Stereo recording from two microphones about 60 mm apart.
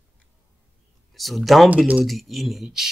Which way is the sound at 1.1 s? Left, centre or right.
Centre.